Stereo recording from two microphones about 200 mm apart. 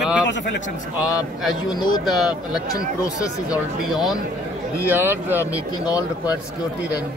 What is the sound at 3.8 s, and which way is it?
Speech, centre (ahead or behind).